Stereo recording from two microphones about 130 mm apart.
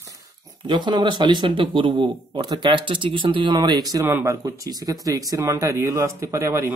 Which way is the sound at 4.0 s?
20° right (ahead or behind).